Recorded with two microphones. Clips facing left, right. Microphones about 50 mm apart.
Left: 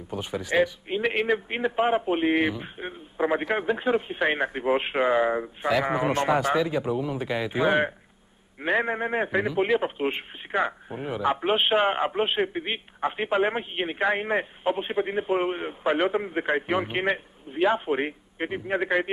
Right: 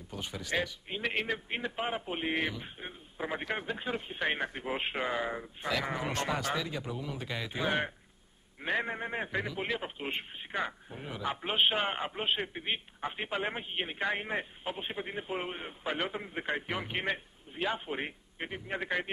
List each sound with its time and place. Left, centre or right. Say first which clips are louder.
0.1 s a man's voice: left 9 dB; centre